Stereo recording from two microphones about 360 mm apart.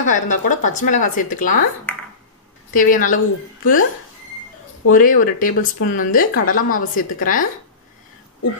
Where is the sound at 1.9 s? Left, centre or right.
Centre.